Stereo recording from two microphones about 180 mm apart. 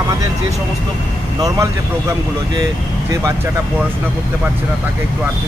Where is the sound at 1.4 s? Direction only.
20° right (ahead or behind).